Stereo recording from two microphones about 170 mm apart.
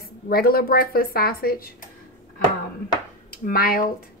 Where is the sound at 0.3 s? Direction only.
60° left (ahead or behind).